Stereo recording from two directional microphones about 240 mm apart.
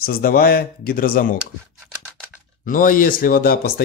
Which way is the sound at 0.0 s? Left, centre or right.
Left.